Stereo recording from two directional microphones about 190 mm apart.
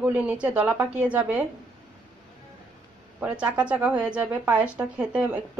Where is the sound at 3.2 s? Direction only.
5° right (ahead or behind).